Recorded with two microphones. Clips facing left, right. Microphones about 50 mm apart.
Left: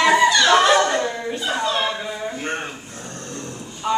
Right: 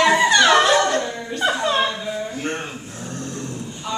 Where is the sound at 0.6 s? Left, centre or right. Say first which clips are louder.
Left 1 dB; left.